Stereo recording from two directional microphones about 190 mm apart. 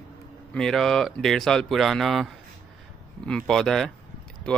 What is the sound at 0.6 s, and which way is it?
Speech, centre (ahead or behind).